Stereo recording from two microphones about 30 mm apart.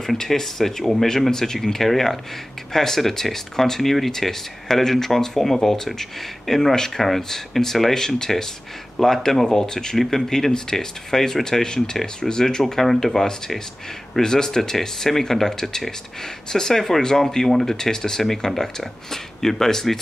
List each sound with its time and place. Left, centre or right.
0.0 s speech: centre
7.0 s speech: centre
8.2 s speech: centre
9.5 s speech: left
9.9 s speech: centre
10.3 s speech: centre
12.8 s speech: centre
18.2 s speech: centre